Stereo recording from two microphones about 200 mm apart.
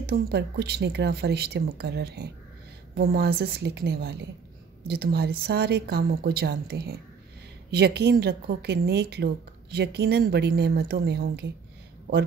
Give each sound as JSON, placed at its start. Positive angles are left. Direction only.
{"t": 0.0, "sound": "a woman's voice", "side_deg": -50}